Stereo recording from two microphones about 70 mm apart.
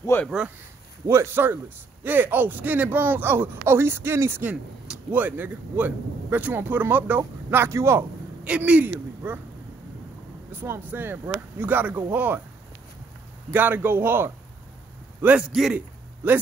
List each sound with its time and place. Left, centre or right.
0.1 s speech: left
1.0 s speech: right
4.5 s a sound: centre
5.1 s speech: right
8.5 s a man's voice: centre
10.5 s speech: right
13.5 s speech: right
15.2 s a man's voice: centre